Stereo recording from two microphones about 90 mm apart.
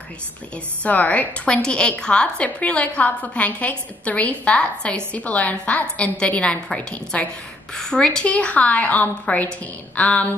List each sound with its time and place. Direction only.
0.8 s a woman's voice: 15° left (ahead or behind)